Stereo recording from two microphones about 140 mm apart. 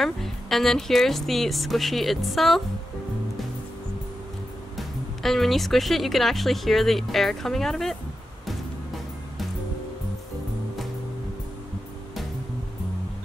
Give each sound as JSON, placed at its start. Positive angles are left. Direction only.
{"t": 0.0, "sound": "speech", "side_deg": 0}
{"t": 4.7, "sound": "speech", "side_deg": 0}